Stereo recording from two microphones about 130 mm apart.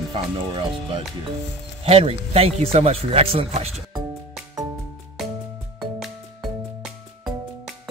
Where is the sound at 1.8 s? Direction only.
50° right (ahead or behind).